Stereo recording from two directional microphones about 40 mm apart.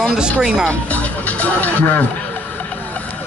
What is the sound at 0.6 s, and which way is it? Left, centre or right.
Speech, left.